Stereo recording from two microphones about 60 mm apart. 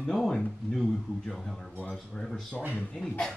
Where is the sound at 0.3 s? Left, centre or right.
Centre.